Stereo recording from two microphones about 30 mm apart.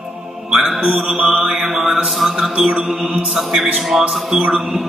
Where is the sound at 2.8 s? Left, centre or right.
Centre.